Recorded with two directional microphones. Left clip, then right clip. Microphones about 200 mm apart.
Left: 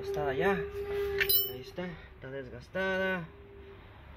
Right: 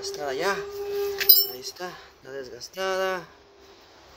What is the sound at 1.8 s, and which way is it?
Speech, 10° right (ahead or behind).